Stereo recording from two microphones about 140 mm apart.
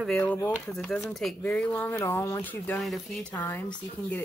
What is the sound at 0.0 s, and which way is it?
Speech, 5° left (ahead or behind).